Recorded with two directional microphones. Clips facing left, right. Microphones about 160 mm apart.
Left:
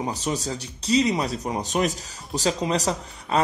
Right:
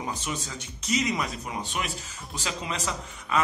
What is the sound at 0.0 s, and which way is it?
Speech, 35° left (ahead or behind).